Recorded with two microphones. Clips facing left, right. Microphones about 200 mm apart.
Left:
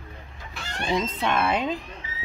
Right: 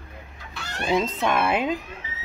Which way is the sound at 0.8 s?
5° right (ahead or behind).